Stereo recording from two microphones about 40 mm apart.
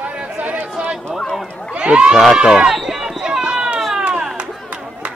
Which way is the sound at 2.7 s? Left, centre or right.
Centre.